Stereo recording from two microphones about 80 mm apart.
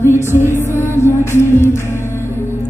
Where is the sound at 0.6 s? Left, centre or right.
Left.